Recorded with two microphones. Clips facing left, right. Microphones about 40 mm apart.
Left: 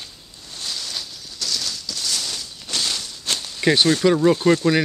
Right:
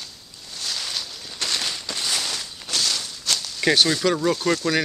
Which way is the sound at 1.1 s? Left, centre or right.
Right.